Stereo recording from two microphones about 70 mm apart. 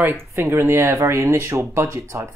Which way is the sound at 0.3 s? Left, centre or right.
Right.